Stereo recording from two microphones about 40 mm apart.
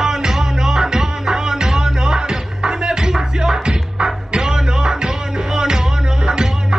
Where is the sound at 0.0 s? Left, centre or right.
Centre.